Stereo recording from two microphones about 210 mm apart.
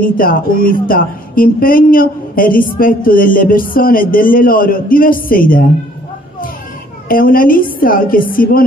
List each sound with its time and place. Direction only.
0.0 s a woman's voice: 45° left (ahead or behind)
7.1 s a woman's voice: 40° left (ahead or behind)